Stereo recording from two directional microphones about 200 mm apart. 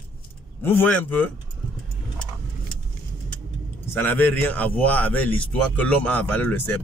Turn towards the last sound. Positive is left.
turn(degrees=10)  # may be behind; listen again after turning